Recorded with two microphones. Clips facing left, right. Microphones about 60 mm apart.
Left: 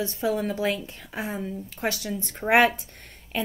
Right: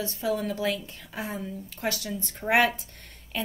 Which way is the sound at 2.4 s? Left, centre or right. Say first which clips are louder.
Left 3 dB; left.